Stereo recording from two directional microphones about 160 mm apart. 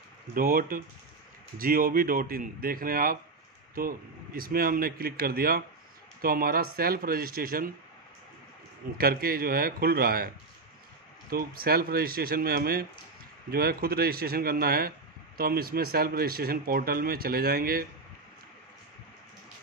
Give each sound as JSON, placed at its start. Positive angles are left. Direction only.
{"t": 0.3, "sound": "a man's voice", "side_deg": -65}
{"t": 8.9, "sound": "a man's voice", "side_deg": -70}